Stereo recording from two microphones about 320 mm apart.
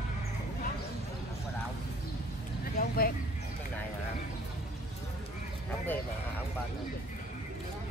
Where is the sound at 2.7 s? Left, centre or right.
Left.